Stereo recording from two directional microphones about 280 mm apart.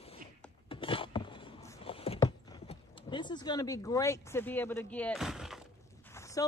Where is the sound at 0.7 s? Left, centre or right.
Centre.